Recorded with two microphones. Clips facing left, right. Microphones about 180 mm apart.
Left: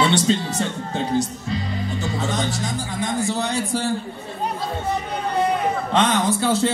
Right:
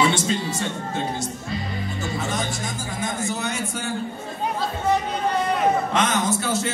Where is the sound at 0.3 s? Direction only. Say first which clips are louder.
Left 5 dB; 30° left (ahead or behind).